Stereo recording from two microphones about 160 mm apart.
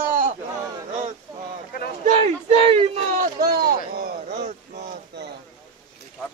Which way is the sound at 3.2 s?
70° right (ahead or behind).